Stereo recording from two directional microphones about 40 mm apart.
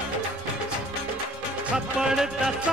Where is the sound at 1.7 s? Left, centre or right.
Centre.